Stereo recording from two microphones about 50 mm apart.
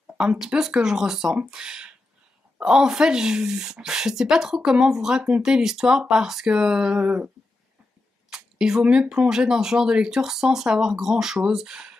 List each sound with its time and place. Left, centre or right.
0.6 s speech: centre
8.3 s speech: centre
9.3 s speech: centre